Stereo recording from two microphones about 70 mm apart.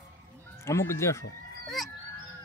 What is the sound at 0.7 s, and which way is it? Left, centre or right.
Speech, left.